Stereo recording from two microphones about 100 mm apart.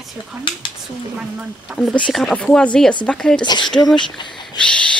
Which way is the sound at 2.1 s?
5° left (ahead or behind).